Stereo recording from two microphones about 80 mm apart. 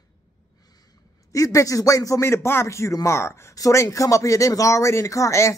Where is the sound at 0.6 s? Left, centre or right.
Left.